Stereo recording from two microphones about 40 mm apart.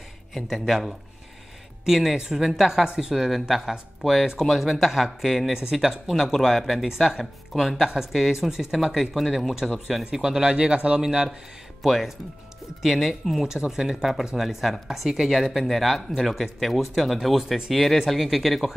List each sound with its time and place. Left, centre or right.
0.3 s speech: centre
5.5 s speech: centre
11.8 s speech: centre
13.5 s speech: centre